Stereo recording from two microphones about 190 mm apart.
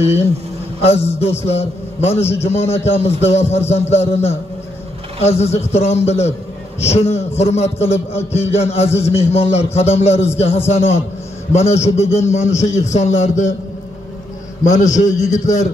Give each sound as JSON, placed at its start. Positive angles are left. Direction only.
{"t": 0.7, "sound": "a man's voice", "side_deg": 35}
{"t": 14.6, "sound": "a man's voice", "side_deg": 40}